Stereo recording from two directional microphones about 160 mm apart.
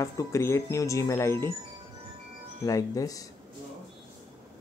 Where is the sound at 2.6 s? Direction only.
20° left (ahead or behind).